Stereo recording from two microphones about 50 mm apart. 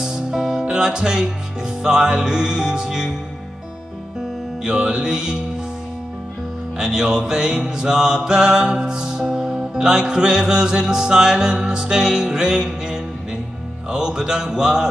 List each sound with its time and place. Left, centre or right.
0.0 s music: centre
4.6 s music: centre
6.8 s music: centre